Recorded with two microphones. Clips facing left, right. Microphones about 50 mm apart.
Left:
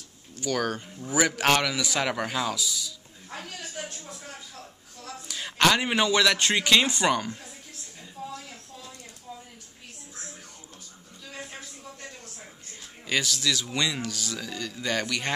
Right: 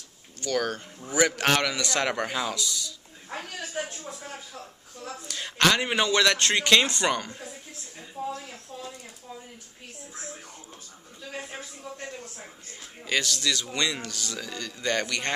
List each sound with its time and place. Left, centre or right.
0.4 s a man's voice: centre
3.3 s a woman's voice: right
5.3 s a man's voice: centre
8.3 s a sound: right
13.0 s a man's voice: centre